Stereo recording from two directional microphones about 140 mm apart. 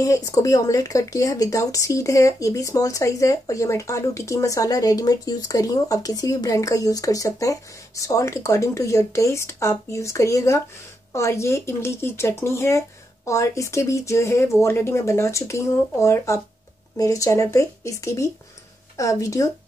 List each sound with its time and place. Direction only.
0.0 s speech: 25° left (ahead or behind)